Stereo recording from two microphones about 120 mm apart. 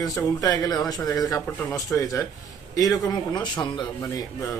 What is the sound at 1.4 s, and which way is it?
Speech, 15° left (ahead or behind).